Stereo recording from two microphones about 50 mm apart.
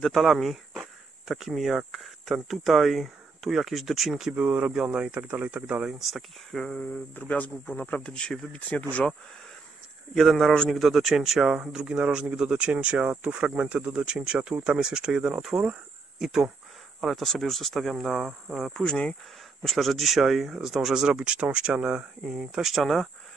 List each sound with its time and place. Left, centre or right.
0.0 s speech: centre
4.4 s speech: right
4.8 s speech: right
5.3 s speech: right
5.9 s speech: centre
7.2 s speech: left
8.0 s speech: centre
8.5 s speech: left
10.1 s speech: centre
17.0 s speech: centre
18.7 s speech: centre
19.6 s speech: centre; by 22.3 s right
22.3 s speech: centre
22.8 s speech: centre